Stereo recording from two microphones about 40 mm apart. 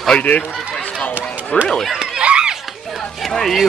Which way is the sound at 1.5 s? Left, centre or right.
Left.